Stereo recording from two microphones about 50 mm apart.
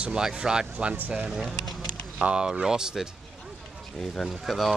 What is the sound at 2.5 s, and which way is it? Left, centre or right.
Speech, centre.